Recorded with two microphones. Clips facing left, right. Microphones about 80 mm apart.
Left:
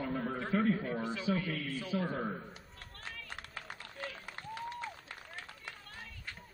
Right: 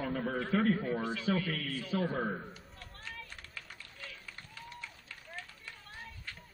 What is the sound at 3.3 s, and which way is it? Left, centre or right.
Run, left.